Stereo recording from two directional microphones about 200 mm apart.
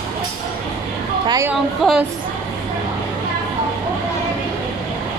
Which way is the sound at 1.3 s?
15° right (ahead or behind).